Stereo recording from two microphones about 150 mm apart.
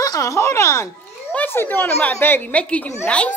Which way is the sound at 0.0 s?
20° left (ahead or behind).